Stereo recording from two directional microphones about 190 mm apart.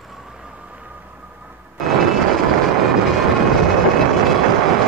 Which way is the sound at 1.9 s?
Centre (ahead or behind).